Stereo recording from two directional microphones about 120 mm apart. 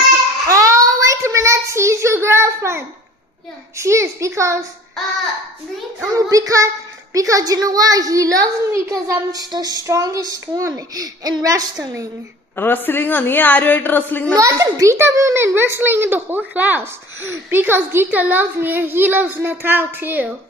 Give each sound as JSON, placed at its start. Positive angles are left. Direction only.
{"t": 0.5, "sound": "child singing", "side_deg": -25}
{"t": 3.7, "sound": "a child's voice", "side_deg": -25}
{"t": 5.9, "sound": "a child's voice", "side_deg": -30}
{"t": 12.5, "sound": "a man's voice", "side_deg": 15}
{"t": 14.3, "sound": "a child's voice", "side_deg": -30}